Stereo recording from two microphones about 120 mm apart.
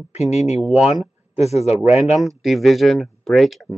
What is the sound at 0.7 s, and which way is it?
Speech, 5° right (ahead or behind).